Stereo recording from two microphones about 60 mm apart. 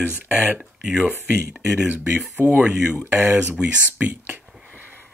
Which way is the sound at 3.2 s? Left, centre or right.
Right.